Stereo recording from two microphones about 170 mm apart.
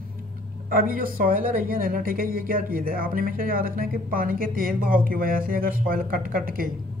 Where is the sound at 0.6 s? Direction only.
55° right (ahead or behind).